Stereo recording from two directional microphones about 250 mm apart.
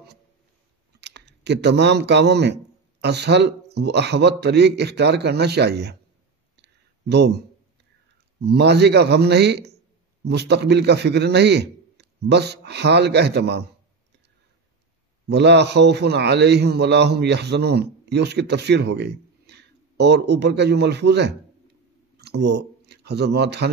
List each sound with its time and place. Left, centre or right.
1.0 s a man's voice: right
6.5 s a sound: right
8.5 s a man's voice: right
15.2 s a man's voice: right